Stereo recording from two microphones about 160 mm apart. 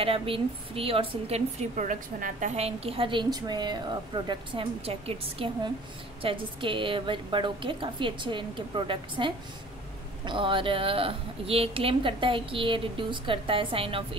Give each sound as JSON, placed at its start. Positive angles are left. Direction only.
{"t": 0.0, "sound": "a woman's voice", "side_deg": -35}
{"t": 2.5, "sound": "a woman's voice", "side_deg": -40}